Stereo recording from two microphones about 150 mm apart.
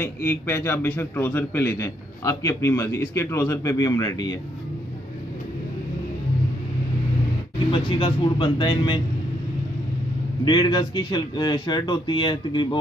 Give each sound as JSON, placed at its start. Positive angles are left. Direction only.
{"t": 0.0, "sound": "a man's voice", "side_deg": 15}
{"t": 7.7, "sound": "speech", "side_deg": 35}
{"t": 10.4, "sound": "a man's voice", "side_deg": 30}